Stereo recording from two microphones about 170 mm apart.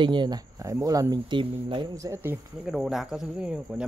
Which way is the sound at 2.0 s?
20° right (ahead or behind).